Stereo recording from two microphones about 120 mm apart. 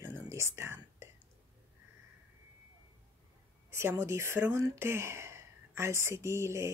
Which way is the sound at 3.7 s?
25° right (ahead or behind).